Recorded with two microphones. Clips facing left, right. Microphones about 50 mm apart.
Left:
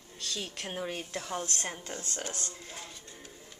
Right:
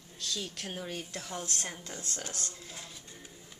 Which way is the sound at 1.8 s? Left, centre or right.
Left.